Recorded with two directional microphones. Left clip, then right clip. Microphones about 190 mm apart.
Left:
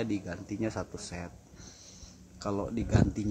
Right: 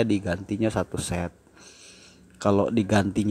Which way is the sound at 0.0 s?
30° right (ahead or behind).